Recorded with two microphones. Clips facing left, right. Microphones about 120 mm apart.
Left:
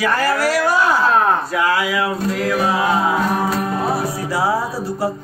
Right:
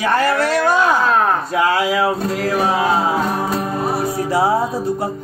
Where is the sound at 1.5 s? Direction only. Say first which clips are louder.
Right 2 dB; 30° right (ahead or behind).